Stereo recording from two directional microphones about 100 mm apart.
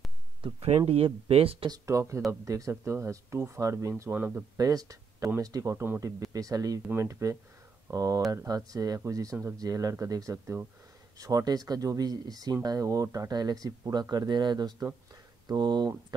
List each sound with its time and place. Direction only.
0.4 s speech: 70° right (ahead or behind)
1.7 s speech: 30° right (ahead or behind)
4.1 s speech: 15° right (ahead or behind)
4.6 s speech: 35° right (ahead or behind)